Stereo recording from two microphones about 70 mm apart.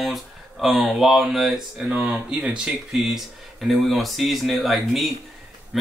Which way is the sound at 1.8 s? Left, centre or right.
Centre.